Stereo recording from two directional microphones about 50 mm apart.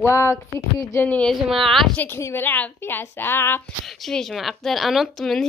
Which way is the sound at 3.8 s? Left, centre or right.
Centre.